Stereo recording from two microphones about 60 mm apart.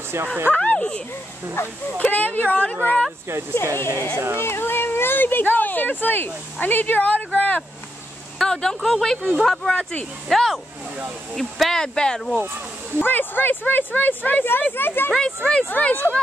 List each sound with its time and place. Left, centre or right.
0.5 s speech: left
2.0 s speech: left
3.7 s speech: left
8.4 s speech: centre
9.7 s speech: centre
10.3 s speech: centre
13.0 s speech: left
15.1 s speech: centre
15.7 s speech: left